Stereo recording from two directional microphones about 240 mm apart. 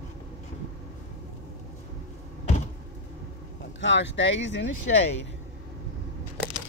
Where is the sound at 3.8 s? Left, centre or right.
Left.